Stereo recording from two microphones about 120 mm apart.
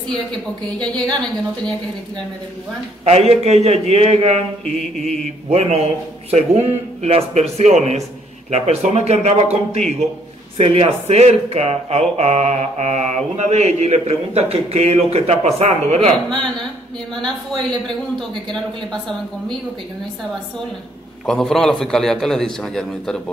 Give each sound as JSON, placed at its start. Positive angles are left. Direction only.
{"t": 0.7, "sound": "a woman's voice", "side_deg": 10}
{"t": 3.1, "sound": "speech", "side_deg": -65}
{"t": 10.6, "sound": "speech", "side_deg": -50}
{"t": 18.1, "sound": "a man's voice", "side_deg": 5}
{"t": 21.3, "sound": "a man's voice", "side_deg": 5}